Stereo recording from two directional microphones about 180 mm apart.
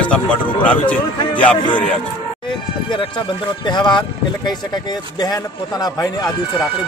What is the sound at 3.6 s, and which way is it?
Speech, 25° left (ahead or behind).